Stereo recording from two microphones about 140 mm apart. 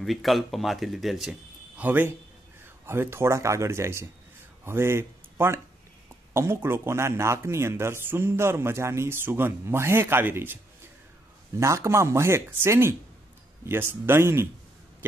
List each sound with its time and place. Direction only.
0.0 s speech: centre (ahead or behind)
1.8 s speech: 15° right (ahead or behind)
11.6 s speech: 20° right (ahead or behind)